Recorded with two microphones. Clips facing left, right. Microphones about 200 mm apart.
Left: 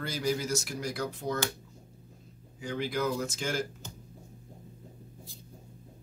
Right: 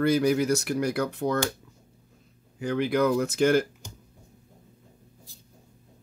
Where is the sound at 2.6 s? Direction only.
60° right (ahead or behind).